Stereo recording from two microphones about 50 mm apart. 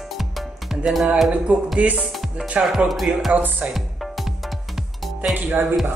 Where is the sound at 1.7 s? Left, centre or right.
Right.